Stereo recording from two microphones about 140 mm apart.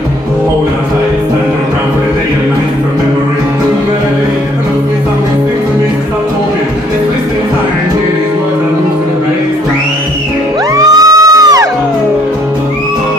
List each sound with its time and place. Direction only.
10.9 s music: 25° right (ahead or behind)